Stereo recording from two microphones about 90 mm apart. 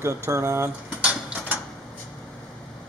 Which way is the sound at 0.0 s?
30° right (ahead or behind).